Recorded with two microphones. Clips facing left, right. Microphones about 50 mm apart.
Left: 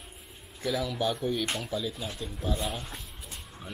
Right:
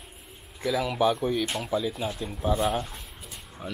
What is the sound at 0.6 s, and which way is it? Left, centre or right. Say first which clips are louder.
Speech: right 5 dB; centre.